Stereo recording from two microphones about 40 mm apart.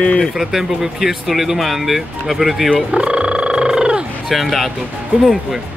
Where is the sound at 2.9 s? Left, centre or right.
Right.